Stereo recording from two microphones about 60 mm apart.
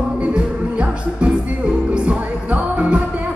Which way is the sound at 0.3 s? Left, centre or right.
Centre.